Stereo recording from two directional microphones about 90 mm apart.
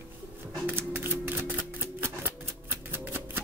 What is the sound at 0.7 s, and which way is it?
Typewriter, 25° right (ahead or behind).